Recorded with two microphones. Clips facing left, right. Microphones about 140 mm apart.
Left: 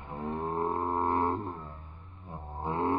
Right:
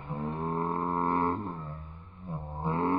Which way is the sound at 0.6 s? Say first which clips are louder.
Left 1 dB; 20° left (ahead or behind).